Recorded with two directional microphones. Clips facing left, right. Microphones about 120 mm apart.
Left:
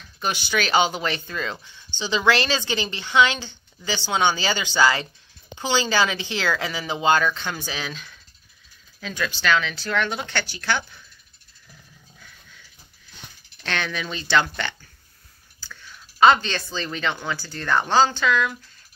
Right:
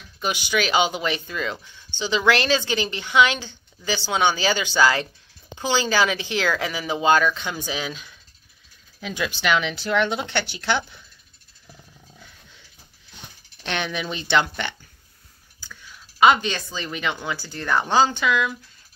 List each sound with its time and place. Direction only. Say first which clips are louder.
0.2 s a woman's voice: right 1 dB; 10° right (ahead or behind)
12.2 s dog: right 1 dB; 20° right (ahead or behind)
13.6 s a woman's voice: right 1 dB; 15° right (ahead or behind)